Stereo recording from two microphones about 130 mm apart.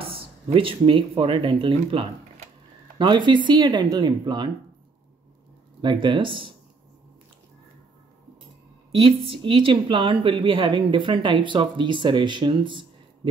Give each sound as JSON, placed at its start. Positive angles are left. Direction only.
{"t": 0.0, "sound": "a woman's voice", "side_deg": -45}
{"t": 5.8, "sound": "a woman's voice", "side_deg": -35}
{"t": 8.9, "sound": "a woman's voice", "side_deg": -45}